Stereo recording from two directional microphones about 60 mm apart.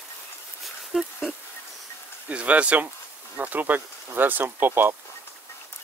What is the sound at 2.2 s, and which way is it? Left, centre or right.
Speech, right.